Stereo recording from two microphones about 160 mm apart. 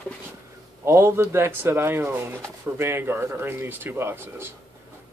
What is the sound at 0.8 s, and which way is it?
Speech, 15° right (ahead or behind).